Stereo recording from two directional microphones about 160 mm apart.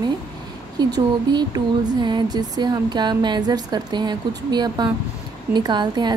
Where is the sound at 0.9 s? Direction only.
25° right (ahead or behind).